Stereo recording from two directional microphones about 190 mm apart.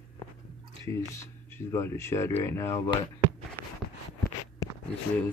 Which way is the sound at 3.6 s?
15° left (ahead or behind).